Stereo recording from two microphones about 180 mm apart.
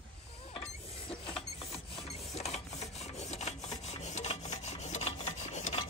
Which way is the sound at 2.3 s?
35° left (ahead or behind).